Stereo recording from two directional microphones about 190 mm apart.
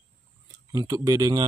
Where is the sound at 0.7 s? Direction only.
20° right (ahead or behind).